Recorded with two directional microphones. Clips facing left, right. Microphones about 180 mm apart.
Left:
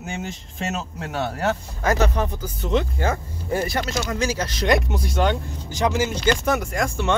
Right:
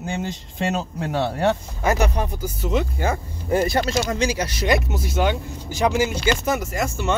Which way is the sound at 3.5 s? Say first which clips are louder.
Right 4 dB; 25° right (ahead or behind).